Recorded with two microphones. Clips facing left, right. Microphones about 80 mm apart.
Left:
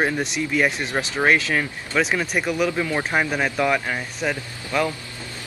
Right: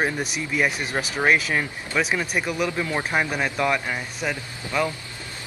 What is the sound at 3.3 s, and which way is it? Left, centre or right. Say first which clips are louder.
Speech: left 2 dB; centre.